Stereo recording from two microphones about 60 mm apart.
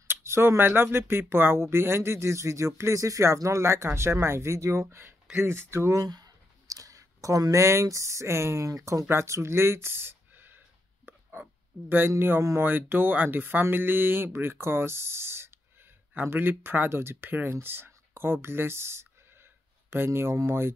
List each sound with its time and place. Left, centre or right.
0.1 s speech: right
4.8 s speech: right
5.9 s a sound: right
7.5 s speech: right
9.1 s speech: right
11.1 s a sound: right
12.2 s speech: right
20.1 s speech: right